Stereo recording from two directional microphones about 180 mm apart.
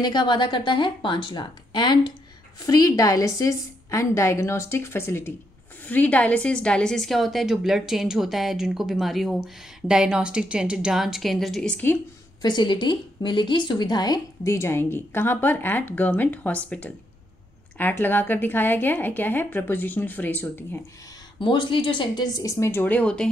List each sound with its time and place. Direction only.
0.0 s a woman's voice: 25° left (ahead or behind); by 12.0 s 10° left (ahead or behind)
12.4 s a woman's voice: 25° left (ahead or behind)
21.4 s speech: 25° left (ahead or behind); by 23.3 s 5° left (ahead or behind)